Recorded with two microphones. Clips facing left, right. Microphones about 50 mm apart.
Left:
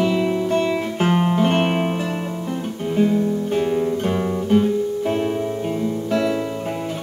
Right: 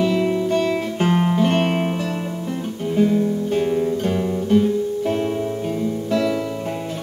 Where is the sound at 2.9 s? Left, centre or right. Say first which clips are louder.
Even; centre.